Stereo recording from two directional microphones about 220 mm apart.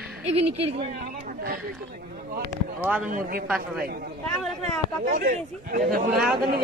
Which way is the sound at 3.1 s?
40° right (ahead or behind).